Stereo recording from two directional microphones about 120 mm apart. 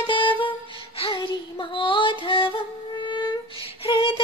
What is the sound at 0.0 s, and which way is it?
Music, 45° left (ahead or behind).